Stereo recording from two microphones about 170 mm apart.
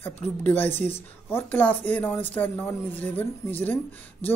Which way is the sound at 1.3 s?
10° left (ahead or behind).